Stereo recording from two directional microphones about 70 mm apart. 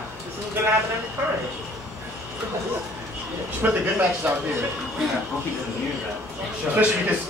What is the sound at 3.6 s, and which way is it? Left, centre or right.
Speech, right.